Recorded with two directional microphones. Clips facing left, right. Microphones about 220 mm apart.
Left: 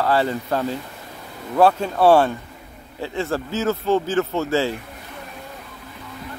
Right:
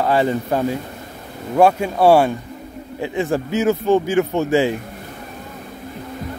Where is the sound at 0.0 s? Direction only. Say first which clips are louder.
Right 3 dB; 15° right (ahead or behind).